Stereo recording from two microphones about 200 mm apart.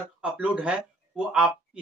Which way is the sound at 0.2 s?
5° right (ahead or behind).